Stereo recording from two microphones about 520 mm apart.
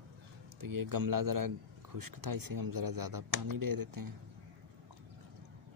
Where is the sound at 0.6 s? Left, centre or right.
Right.